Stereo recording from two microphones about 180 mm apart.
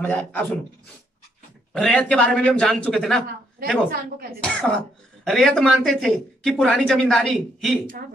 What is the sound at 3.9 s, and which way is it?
Speech, 55° right (ahead or behind).